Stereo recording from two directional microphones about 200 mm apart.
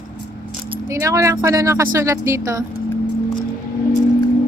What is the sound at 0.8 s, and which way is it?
Speech, 15° right (ahead or behind).